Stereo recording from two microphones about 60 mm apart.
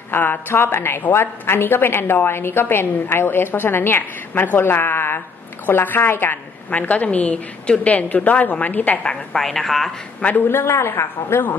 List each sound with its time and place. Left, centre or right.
0.1 s a woman's voice: left
4.3 s a woman's voice: left
9.4 s speech: centre
10.2 s a woman's voice: left